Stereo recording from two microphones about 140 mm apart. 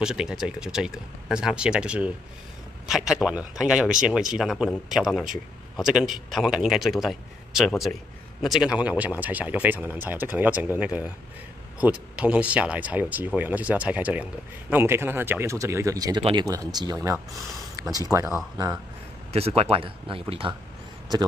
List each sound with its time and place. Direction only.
0.0 s speech: 5° right (ahead or behind); by 18.3 s 20° right (ahead or behind)
19.3 s speech: 45° right (ahead or behind)